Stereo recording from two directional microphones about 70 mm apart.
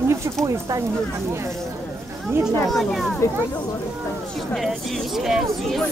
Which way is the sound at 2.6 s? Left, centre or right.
Centre.